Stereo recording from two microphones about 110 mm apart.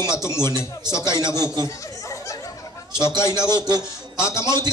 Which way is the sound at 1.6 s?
30° left (ahead or behind).